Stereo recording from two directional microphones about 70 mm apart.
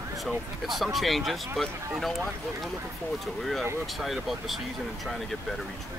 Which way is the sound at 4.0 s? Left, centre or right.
Centre.